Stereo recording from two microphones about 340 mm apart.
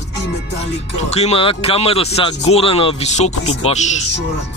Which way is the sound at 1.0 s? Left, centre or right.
Centre.